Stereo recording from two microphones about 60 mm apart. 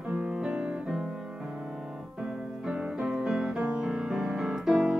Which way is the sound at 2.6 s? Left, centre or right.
Centre.